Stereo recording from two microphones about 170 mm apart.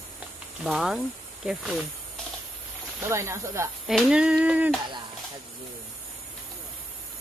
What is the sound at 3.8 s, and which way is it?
Speech, centre (ahead or behind).